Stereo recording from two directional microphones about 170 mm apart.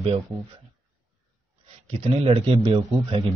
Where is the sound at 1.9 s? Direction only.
35° right (ahead or behind).